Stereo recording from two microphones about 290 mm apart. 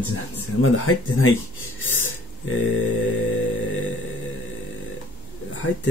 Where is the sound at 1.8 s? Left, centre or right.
Left.